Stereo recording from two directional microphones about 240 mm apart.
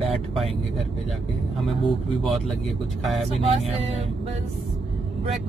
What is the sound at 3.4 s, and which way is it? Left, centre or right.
Speech, right.